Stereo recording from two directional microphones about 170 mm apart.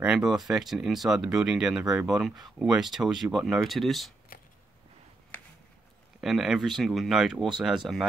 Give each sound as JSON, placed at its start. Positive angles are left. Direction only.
{"t": 0.0, "sound": "speech", "side_deg": -5}
{"t": 4.3, "sound": "a sound", "side_deg": 60}
{"t": 6.2, "sound": "speech", "side_deg": 0}